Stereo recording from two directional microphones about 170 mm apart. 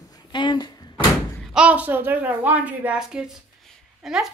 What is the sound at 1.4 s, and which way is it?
A woman's voice, 5° right (ahead or behind).